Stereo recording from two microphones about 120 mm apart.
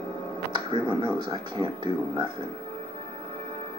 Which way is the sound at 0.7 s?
45° right (ahead or behind).